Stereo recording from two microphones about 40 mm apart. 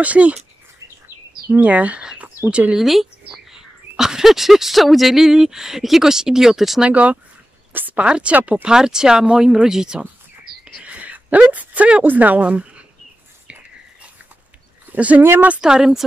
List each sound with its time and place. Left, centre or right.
0.0 s speech: right
1.6 s speech: right
2.8 s speech: centre
6.9 s a woman's voice: right
8.4 s speech: right
8.6 s speech: centre
10.8 s a sound: right
12.1 s speech: right
13.5 s a sound: right
15.0 s speech: right
15.6 s speech: centre